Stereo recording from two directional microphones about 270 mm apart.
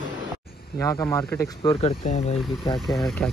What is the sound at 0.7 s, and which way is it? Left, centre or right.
Speech, centre.